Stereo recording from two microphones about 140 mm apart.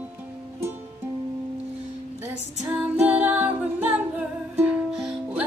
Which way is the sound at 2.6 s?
10° right (ahead or behind).